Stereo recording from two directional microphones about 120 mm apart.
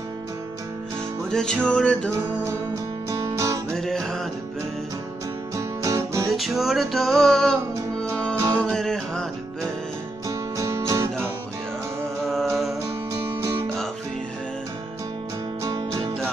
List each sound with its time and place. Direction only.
1.3 s music: 5° left (ahead or behind)
3.1 s music: 25° right (ahead or behind)
3.7 s music: 5° left (ahead or behind)
5.6 s music: 25° right (ahead or behind)
6.2 s music: centre (ahead or behind)
10.2 s music: 25° right (ahead or behind)
12.2 s music: 5° left (ahead or behind)
13.1 s music: 25° right (ahead or behind)